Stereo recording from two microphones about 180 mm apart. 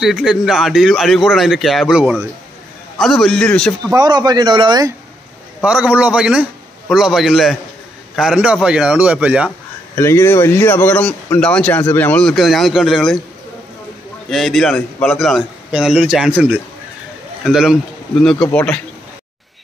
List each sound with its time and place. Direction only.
0.0 s speech: centre (ahead or behind)
3.9 s speech: 20° right (ahead or behind)
5.6 s a man's voice: 5° right (ahead or behind)
9.9 s speech: 15° left (ahead or behind)
14.3 s speech: centre (ahead or behind)
17.5 s speech: centre (ahead or behind)
18.5 s speech: 10° left (ahead or behind)